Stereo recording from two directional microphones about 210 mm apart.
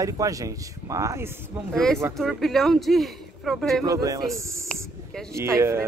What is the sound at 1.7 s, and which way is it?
Speech, 5° left (ahead or behind).